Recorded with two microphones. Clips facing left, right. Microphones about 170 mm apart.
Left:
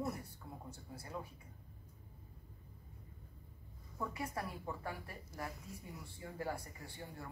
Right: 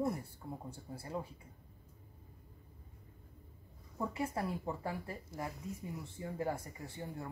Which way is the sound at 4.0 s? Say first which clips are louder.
Right 5 dB; 25° right (ahead or behind).